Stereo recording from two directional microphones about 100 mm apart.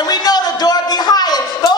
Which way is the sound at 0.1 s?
45° left (ahead or behind).